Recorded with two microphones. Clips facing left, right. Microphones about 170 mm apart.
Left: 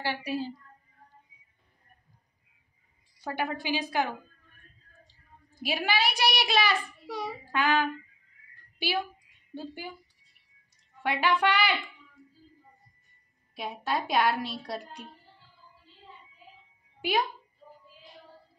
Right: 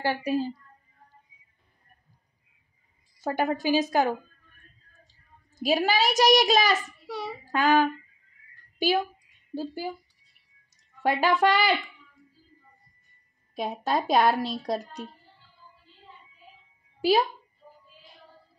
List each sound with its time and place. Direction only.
0.0 s a woman's voice: 45° right (ahead or behind)
3.2 s a woman's voice: 45° right (ahead or behind)
5.0 s a child's voice: 45° right (ahead or behind)
7.1 s a child's voice: 15° left (ahead or behind)
7.5 s a woman's voice: 40° right (ahead or behind)
11.0 s speech: 40° right (ahead or behind)
13.6 s a woman's voice: 45° right (ahead or behind)
17.0 s a child's voice: 35° right (ahead or behind)